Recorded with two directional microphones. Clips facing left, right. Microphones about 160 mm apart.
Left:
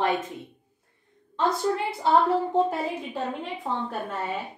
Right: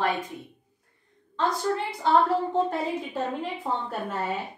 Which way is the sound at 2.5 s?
Centre (ahead or behind).